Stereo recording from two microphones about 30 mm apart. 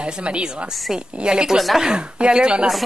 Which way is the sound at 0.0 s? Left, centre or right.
Right.